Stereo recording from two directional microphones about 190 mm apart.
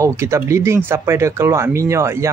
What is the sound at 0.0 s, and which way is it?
Speech, 15° right (ahead or behind).